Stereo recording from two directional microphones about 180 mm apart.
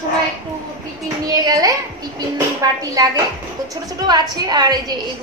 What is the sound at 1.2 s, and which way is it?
A woman's voice, 20° right (ahead or behind).